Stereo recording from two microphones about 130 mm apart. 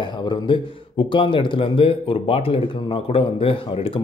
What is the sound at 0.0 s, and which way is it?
Speech, 35° left (ahead or behind).